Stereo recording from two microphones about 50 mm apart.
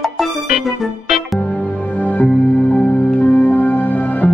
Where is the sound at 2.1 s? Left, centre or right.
Left.